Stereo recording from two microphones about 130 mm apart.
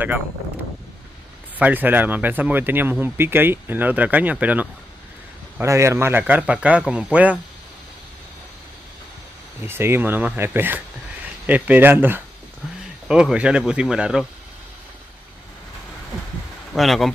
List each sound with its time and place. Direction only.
1.6 s speech: 15° right (ahead or behind)
5.6 s speech: 20° right (ahead or behind)
9.6 s speech: 20° right (ahead or behind)
16.7 s speech: centre (ahead or behind)